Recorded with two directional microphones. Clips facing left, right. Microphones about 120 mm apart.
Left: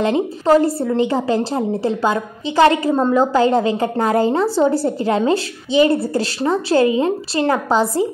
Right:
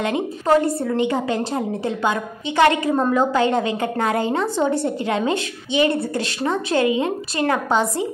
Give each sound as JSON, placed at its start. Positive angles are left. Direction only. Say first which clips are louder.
{"t": 0.0, "sound": "a woman's voice", "louder": "left 5 dB", "side_deg": 30}